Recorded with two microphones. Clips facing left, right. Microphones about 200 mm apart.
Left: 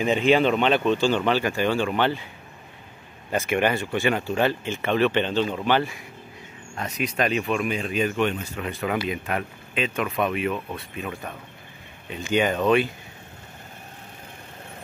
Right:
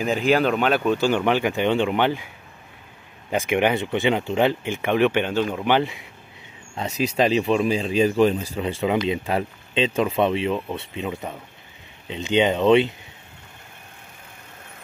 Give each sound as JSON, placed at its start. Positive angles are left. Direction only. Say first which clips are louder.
{"t": 0.0, "sound": "speech", "louder": "even", "side_deg": 0}
{"t": 3.3, "sound": "speech", "louder": "right 2 dB", "side_deg": -15}
{"t": 7.0, "sound": "speech", "louder": "right 5 dB", "side_deg": -30}